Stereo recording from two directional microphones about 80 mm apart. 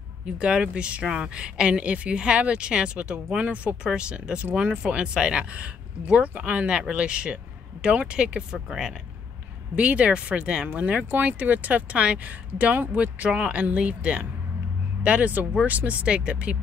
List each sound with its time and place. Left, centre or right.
0.4 s speech: centre